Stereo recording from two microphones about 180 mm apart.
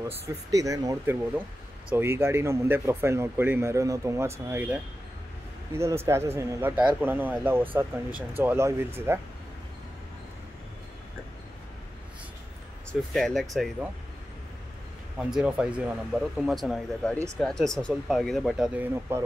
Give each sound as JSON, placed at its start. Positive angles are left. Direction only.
{"t": 0.5, "sound": "speech", "side_deg": -20}
{"t": 5.8, "sound": "speech", "side_deg": -15}
{"t": 13.1, "sound": "speech", "side_deg": 0}
{"t": 15.1, "sound": "speech", "side_deg": -5}
{"t": 19.1, "sound": "speech", "side_deg": -10}